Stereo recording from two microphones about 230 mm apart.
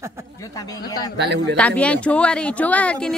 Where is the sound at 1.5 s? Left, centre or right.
Centre.